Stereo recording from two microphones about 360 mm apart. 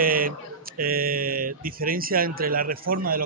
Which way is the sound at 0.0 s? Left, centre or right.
Right.